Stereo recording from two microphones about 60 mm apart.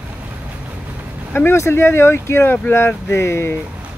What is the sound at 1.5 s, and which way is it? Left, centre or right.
Speech, left.